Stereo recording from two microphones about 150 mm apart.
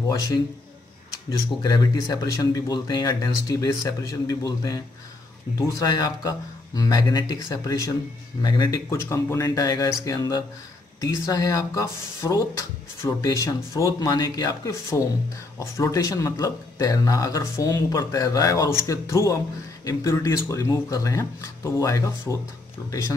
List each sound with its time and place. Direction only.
1.6 s speech: 25° left (ahead or behind)